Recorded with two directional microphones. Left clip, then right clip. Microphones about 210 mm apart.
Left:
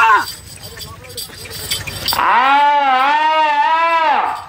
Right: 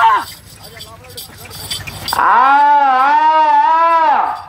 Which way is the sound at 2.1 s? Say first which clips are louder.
Right 3 dB; 25° right (ahead or behind).